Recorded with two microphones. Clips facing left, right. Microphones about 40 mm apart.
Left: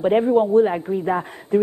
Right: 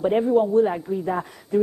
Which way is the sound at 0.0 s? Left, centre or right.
Left.